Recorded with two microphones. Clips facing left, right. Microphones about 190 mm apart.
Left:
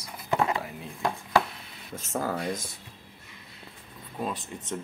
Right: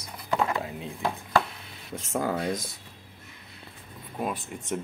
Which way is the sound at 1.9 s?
20° right (ahead or behind).